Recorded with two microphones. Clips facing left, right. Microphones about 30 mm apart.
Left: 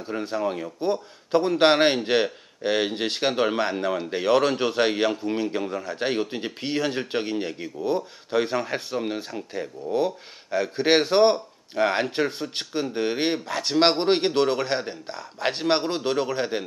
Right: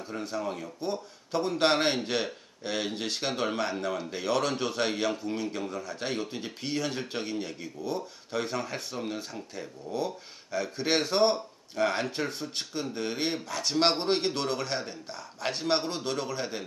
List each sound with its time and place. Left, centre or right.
0.0 s speech: left